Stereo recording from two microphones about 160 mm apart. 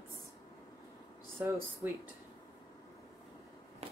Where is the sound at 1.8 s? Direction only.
15° right (ahead or behind).